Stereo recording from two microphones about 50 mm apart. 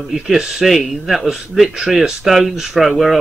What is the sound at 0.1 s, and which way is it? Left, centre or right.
Speech, centre.